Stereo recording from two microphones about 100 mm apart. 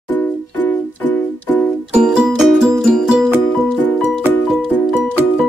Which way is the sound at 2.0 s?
5° right (ahead or behind).